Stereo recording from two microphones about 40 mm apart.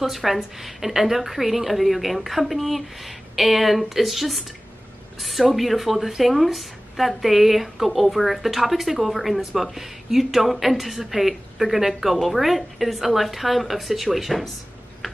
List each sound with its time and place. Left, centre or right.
0.0 s speech: centre